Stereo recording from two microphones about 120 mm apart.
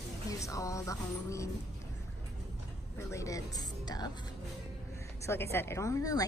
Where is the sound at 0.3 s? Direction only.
30° left (ahead or behind).